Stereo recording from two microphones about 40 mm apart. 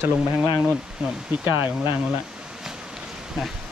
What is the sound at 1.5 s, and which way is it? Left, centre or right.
Speech, right.